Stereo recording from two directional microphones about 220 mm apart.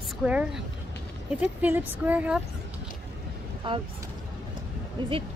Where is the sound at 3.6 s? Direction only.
20° right (ahead or behind).